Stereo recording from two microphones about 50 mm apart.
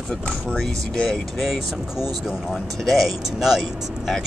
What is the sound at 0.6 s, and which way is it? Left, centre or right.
Speech, centre.